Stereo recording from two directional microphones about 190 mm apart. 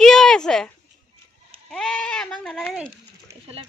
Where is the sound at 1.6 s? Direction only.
Centre (ahead or behind).